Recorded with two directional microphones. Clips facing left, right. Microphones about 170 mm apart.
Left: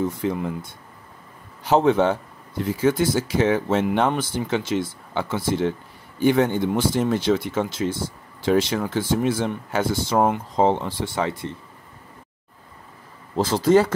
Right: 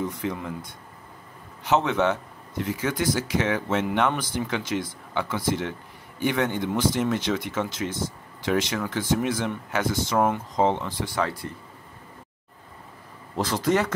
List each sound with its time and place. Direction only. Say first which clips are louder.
0.2 s speech: left 5 dB; 30° left (ahead or behind)
13.4 s speech: left 6 dB; 30° left (ahead or behind)